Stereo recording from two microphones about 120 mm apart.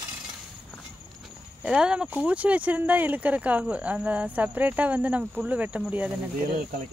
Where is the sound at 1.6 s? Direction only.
10° right (ahead or behind).